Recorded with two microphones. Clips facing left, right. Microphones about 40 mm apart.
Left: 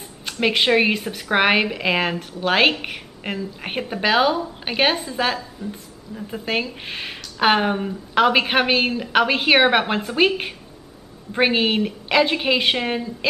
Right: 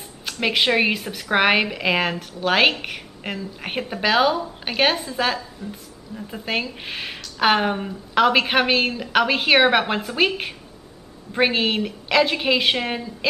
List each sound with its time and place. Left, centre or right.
0.2 s speech: centre